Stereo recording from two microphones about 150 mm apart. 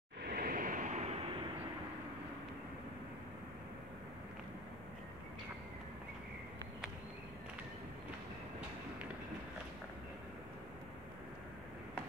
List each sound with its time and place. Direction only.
0.2 s vehicle: 85° right; by 1.2 s 50° right (ahead or behind)